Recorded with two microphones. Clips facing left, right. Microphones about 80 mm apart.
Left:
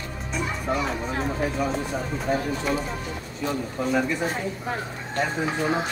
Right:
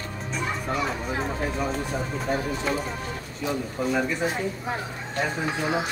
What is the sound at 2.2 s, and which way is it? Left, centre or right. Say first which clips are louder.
Speech: left 2 dB; centre.